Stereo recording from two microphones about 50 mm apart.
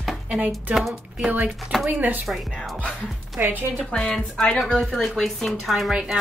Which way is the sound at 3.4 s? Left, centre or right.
Right.